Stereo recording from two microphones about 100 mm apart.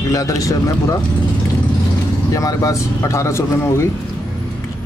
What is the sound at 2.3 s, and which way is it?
Speech, 35° left (ahead or behind).